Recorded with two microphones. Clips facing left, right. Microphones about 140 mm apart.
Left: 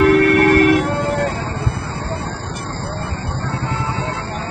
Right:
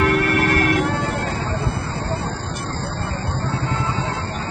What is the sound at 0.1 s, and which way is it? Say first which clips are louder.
Music: left 7 dB; 55° left (ahead or behind).